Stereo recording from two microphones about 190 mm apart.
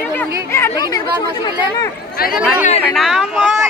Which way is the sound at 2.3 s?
5° right (ahead or behind).